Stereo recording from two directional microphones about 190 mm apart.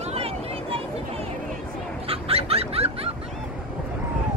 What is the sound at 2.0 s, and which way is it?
Fowl, 30° right (ahead or behind).